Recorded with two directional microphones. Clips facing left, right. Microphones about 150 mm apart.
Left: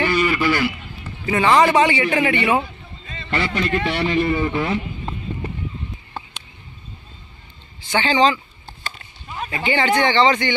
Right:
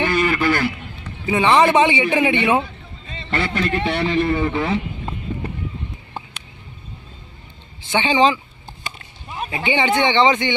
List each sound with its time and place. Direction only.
0.1 s a man's voice: 50° right (ahead or behind)
1.2 s speech: 20° right (ahead or behind)
3.3 s a man's voice: centre (ahead or behind)
7.9 s speech: 20° right (ahead or behind)
8.8 s a sound: 15° right (ahead or behind)